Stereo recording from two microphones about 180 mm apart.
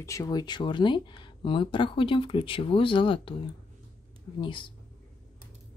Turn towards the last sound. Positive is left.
turn(degrees=25)  # may be behind; listen again after turning